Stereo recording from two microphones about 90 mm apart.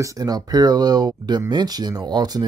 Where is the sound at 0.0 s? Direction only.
45° right (ahead or behind).